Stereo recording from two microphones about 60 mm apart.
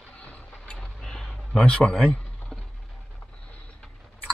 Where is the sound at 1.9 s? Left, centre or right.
Centre.